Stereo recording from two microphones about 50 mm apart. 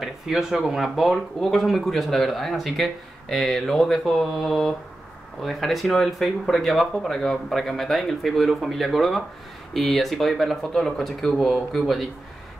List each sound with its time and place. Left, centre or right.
0.0 s speech: centre